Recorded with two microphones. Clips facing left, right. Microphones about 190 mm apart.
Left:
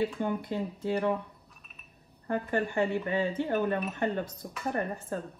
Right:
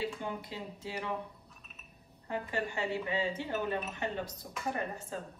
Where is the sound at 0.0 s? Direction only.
55° left (ahead or behind).